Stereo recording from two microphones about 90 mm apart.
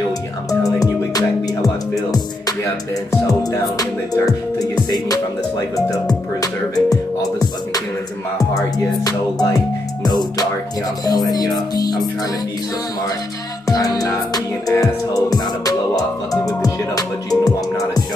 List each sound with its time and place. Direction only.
0.7 s music: 45° left (ahead or behind)
13.7 s music: 45° left (ahead or behind)